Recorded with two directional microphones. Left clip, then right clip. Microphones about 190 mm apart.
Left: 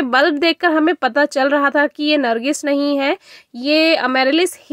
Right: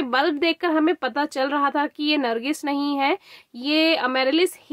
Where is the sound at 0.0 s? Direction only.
25° left (ahead or behind).